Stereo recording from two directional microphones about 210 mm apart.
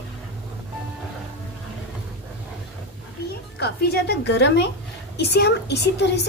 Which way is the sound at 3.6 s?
50° left (ahead or behind).